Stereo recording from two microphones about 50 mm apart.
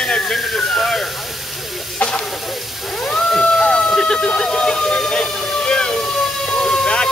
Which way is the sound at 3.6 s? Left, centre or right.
Centre.